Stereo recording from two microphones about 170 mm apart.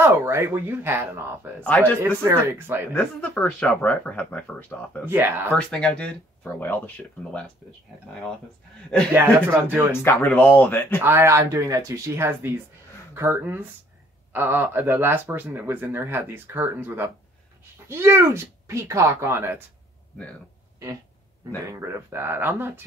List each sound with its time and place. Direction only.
0.0 s speech: 15° right (ahead or behind)
1.6 s speech: 5° left (ahead or behind)
2.0 s speech: 15° right (ahead or behind)
2.9 s speech: 10° left (ahead or behind)
5.0 s speech: 10° right (ahead or behind)
5.5 s speech: 5° left (ahead or behind)
9.1 s speech: 15° right (ahead or behind)
10.0 s speech: 10° left (ahead or behind)
11.0 s speech: 15° right (ahead or behind)
21.6 s speech: 15° right (ahead or behind)